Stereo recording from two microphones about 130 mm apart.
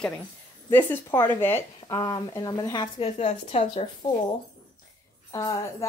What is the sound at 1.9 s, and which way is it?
Speech, 30° left (ahead or behind).